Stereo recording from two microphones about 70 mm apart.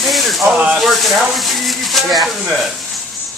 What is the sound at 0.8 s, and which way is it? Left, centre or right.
Speech, centre.